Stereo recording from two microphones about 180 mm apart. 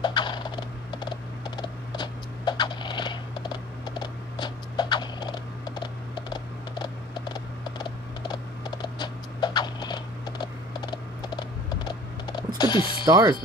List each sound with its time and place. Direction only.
0.0 s computer keyboard: 25° left (ahead or behind)
12.5 s mechanisms: 25° left (ahead or behind)
13.0 s speech: 20° right (ahead or behind)